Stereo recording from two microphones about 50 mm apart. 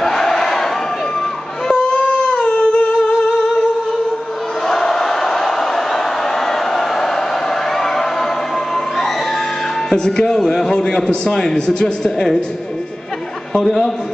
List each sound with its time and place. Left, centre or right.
0.0 s battle cry: centre
1.7 s a sound: centre
4.6 s crowd: centre
6.4 s a sound: centre
9.8 s a man's voice: centre
13.5 s a man's voice: centre